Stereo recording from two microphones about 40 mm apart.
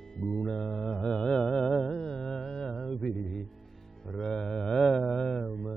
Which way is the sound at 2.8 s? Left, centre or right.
Centre.